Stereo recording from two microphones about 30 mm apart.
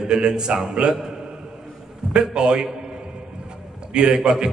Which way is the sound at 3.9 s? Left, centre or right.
Right.